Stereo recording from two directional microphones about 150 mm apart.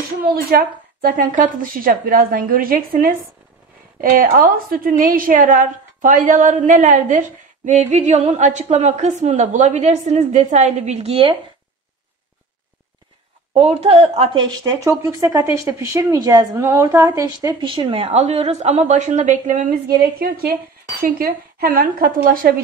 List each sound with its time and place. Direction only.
0.2 s a woman's voice: 90° right; by 11.3 s 40° right (ahead or behind)
13.5 s a woman's voice: 45° right (ahead or behind)
14.5 s speech: 25° right (ahead or behind); by 19.7 s 60° right (ahead or behind)
20.2 s a woman's voice: 85° right
21.0 s a woman's voice: 70° right (ahead or behind)